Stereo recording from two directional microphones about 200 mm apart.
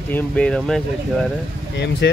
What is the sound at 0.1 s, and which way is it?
Speech, 10° left (ahead or behind).